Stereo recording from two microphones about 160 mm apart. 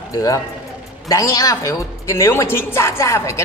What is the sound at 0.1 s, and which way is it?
A man's voice, 20° left (ahead or behind).